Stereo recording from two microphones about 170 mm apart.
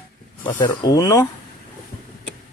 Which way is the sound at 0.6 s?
20° left (ahead or behind).